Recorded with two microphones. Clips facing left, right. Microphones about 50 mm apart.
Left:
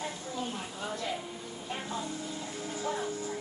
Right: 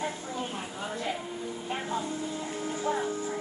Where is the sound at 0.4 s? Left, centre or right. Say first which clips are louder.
Even; right.